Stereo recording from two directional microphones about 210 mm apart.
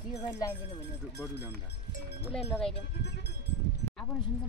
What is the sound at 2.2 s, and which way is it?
Speech, 5° left (ahead or behind).